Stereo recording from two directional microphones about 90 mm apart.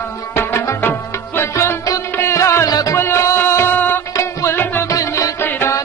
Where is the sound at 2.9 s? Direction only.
30° left (ahead or behind).